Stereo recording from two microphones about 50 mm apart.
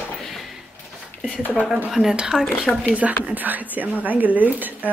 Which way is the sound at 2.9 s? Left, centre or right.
Right.